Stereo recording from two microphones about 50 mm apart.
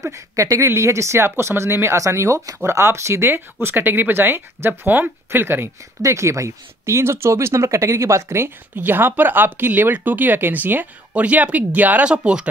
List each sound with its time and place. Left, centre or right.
0.0 s speech: right
0.7 s speech: right
1.2 s speech: right
2.8 s speech: right
6.0 s speech: right
8.7 s speech: right
12.0 s speech: right